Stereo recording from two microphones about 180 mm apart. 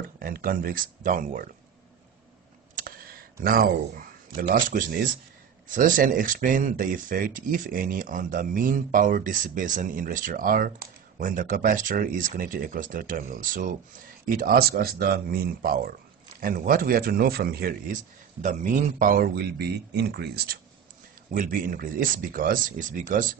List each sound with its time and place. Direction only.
0.2 s speech: 55° right (ahead or behind)
2.8 s a sound: 55° right (ahead or behind)
4.6 s speech: 50° right (ahead or behind)
21.3 s speech: 50° right (ahead or behind)